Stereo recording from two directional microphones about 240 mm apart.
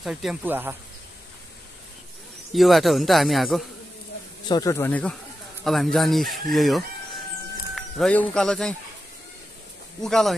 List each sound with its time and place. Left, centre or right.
0.0 s speech: centre
2.5 s speech: centre
4.5 s speech: centre
10.0 s speech: centre